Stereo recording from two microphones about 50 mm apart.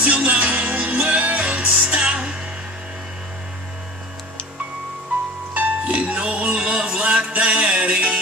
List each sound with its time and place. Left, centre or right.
0.0 s music: right
5.5 s music: right